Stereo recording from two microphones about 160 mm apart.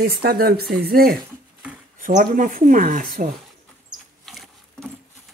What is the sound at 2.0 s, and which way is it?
Speech, 55° right (ahead or behind).